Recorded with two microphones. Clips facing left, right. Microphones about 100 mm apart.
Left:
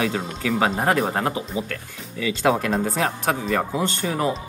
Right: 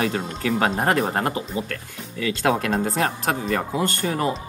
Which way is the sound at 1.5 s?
15° left (ahead or behind).